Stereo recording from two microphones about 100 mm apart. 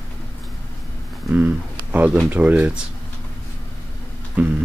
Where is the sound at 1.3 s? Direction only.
15° right (ahead or behind).